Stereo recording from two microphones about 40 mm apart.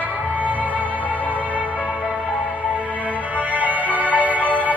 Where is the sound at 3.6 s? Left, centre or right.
Right.